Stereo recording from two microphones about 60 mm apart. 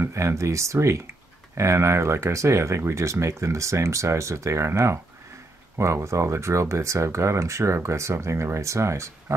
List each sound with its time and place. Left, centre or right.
0.0 s speech: right